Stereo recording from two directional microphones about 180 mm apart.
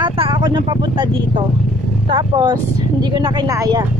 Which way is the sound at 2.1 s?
25° right (ahead or behind).